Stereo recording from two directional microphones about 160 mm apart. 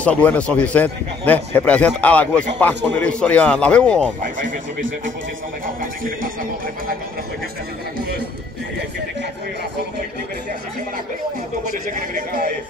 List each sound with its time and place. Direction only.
0.0 s a man's voice: 10° left (ahead or behind)
4.2 s speech: 55° right (ahead or behind)
5.8 s speech: 60° right (ahead or behind)